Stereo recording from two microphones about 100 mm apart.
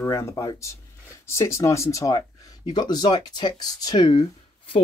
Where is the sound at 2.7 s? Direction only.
45° left (ahead or behind).